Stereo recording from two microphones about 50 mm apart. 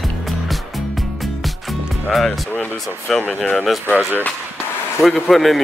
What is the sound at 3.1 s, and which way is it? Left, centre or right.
Speech, centre.